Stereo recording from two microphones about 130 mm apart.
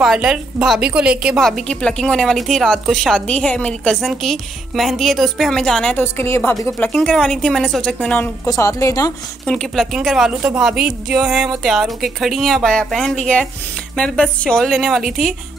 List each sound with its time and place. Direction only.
0.0 s a woman's voice: 5° right (ahead or behind)
1.4 s a woman's voice: 5° left (ahead or behind)
6.1 s a woman's voice: 20° left (ahead or behind)
6.9 s a woman's voice: 5° left (ahead or behind)
8.5 s a woman's voice: 25° left (ahead or behind)
9.5 s a woman's voice: 5° left (ahead or behind)